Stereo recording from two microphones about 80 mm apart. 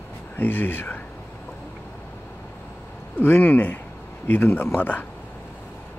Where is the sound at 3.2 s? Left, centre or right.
Left.